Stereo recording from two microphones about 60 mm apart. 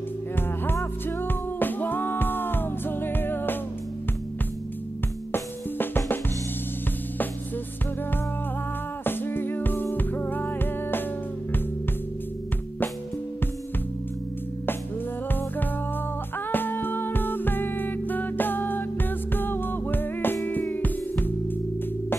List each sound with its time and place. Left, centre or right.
1.0 s music: left
5.3 s drum: left
9.0 s music: left
16.5 s music: left